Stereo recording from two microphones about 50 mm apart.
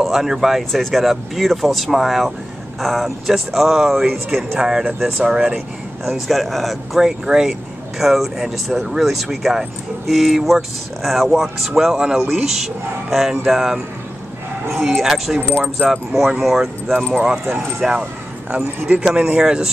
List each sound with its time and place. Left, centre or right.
0.0 s speech: centre
6.0 s speech: centre
7.0 s speech: centre
15.0 s speech: centre
15.5 s speech: right
15.9 s speech: centre
17.1 s speech: centre
18.5 s speech: right
19.4 s speech: centre